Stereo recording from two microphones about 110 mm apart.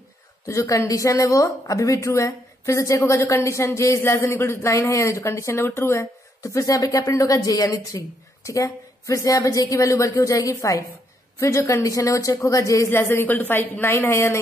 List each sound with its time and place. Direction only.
0.5 s a woman's voice: 30° left (ahead or behind)